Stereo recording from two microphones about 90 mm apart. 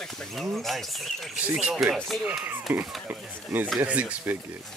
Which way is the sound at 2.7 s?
20° right (ahead or behind).